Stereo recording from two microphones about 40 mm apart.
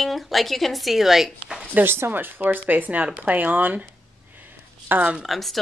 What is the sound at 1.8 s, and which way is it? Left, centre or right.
Speech, right.